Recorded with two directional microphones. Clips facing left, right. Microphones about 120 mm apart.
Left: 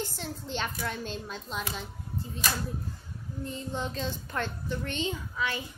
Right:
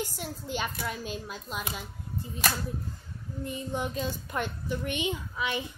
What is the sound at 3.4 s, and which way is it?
A child's voice, 15° right (ahead or behind).